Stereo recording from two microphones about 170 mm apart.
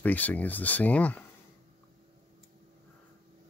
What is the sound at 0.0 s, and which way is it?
Speech, 10° left (ahead or behind).